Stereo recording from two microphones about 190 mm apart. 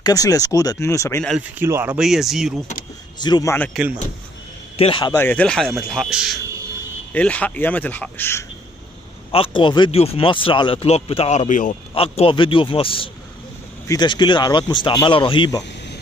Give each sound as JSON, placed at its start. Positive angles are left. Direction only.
{"t": 0.0, "sound": "speech", "side_deg": 20}
{"t": 1.6, "sound": "speech", "side_deg": -10}
{"t": 3.2, "sound": "speech", "side_deg": 20}
{"t": 4.7, "sound": "speech", "side_deg": 30}
{"t": 5.1, "sound": "speech", "side_deg": 10}
{"t": 9.3, "sound": "speech", "side_deg": 30}
{"t": 11.9, "sound": "speech", "side_deg": 30}